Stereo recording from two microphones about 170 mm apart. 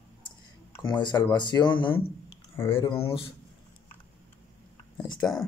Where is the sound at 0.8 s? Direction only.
25° left (ahead or behind).